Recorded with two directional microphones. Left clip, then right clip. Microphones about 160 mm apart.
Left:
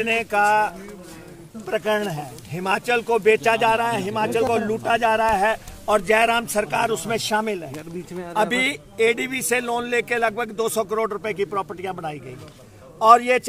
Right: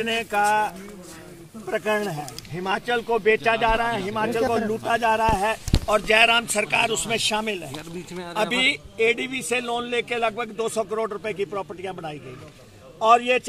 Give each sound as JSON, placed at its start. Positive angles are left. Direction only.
{"t": 0.0, "sound": "speech", "side_deg": 20}
{"t": 2.5, "sound": "a man's voice", "side_deg": 25}
{"t": 5.9, "sound": "speech", "side_deg": 35}
{"t": 6.5, "sound": "a man's voice", "side_deg": 20}